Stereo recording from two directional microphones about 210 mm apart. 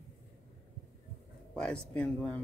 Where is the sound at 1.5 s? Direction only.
5° left (ahead or behind).